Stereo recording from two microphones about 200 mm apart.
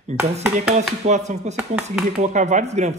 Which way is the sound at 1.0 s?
35° right (ahead or behind).